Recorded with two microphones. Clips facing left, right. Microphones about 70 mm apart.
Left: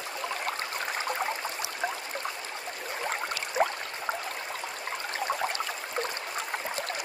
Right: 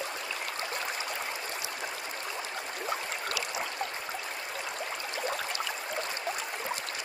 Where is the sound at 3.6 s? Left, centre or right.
Left.